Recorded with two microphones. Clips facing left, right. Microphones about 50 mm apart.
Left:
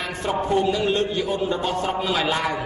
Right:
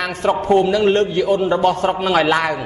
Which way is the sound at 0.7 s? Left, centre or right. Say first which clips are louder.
Right 6 dB; right.